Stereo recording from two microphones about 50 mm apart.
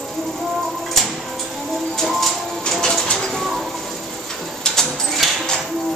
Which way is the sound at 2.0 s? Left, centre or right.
Centre.